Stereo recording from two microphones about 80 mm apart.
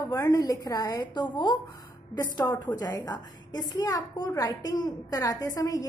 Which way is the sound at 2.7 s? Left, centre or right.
Left.